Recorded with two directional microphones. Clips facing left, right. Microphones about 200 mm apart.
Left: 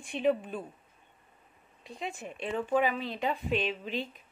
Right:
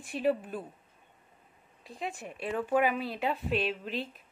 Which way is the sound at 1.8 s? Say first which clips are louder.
Even; centre (ahead or behind).